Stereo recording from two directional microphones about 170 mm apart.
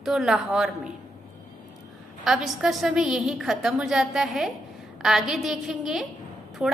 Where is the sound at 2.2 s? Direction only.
Centre (ahead or behind).